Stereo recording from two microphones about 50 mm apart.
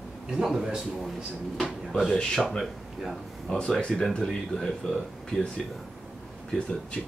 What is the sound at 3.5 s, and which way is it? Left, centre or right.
Speech, centre.